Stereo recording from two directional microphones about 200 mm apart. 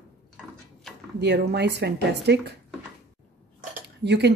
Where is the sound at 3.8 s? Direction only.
60° right (ahead or behind).